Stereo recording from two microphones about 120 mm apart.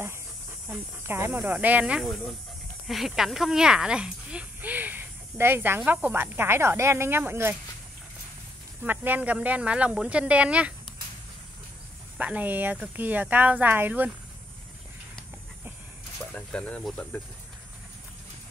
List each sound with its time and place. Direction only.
0.7 s speech: 20° right (ahead or behind)
8.8 s speech: 15° right (ahead or behind)
12.2 s speech: 15° right (ahead or behind)
16.3 s speech: 10° left (ahead or behind)